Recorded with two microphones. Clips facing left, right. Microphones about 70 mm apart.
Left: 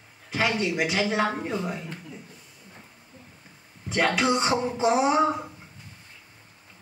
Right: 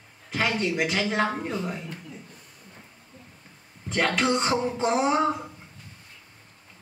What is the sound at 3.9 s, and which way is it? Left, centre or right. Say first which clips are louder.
Speech: left 1 dB; centre.